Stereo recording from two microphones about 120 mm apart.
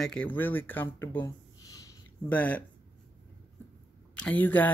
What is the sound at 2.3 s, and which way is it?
Speech, 15° left (ahead or behind).